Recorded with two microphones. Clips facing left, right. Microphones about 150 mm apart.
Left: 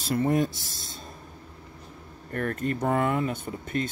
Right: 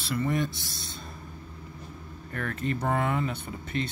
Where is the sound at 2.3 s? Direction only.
45° left (ahead or behind).